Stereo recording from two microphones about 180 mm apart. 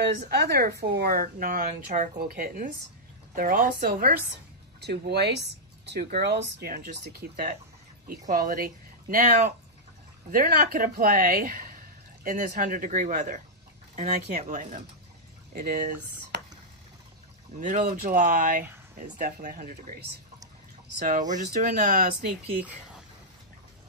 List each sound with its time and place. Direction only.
0.0 s speech: 65° right (ahead or behind)
17.6 s speech: 45° right (ahead or behind)
21.5 s speech: 45° right (ahead or behind)